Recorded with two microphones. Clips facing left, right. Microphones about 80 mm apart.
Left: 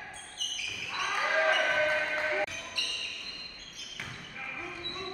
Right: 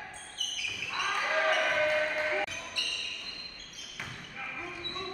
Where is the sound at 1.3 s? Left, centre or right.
Centre.